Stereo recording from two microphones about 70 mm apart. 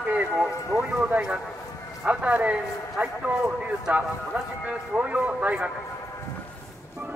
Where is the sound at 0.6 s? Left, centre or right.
Right.